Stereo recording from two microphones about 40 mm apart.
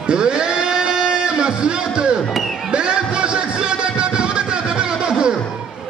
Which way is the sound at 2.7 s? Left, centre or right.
Right.